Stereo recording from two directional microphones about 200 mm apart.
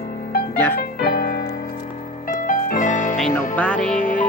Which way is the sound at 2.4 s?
45° left (ahead or behind).